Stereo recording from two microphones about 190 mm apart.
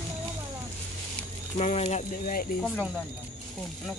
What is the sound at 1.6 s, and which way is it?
Speech, 35° left (ahead or behind).